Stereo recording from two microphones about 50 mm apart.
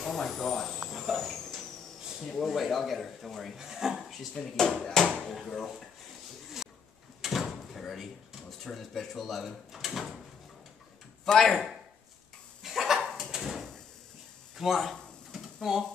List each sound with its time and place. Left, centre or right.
0.0 s speech: centre
3.5 s speech: centre
4.3 s speech: centre
6.6 s pigeon: centre
7.2 s door: centre
8.5 s speech: centre
11.2 s speech: centre
12.6 s goat: centre
14.6 s speech: centre
15.3 s a sound: centre